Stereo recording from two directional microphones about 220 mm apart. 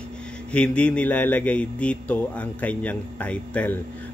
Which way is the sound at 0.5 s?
5° left (ahead or behind).